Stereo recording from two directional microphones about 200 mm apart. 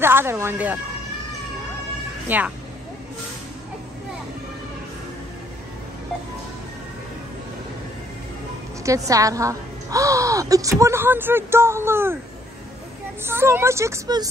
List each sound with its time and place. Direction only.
0.0 s speech: 10° right (ahead or behind)
2.2 s speech: 10° right (ahead or behind)
8.8 s a woman's voice: 15° right (ahead or behind)
13.2 s a woman's voice: 10° right (ahead or behind)